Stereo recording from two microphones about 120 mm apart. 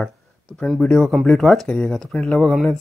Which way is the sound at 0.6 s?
5° left (ahead or behind).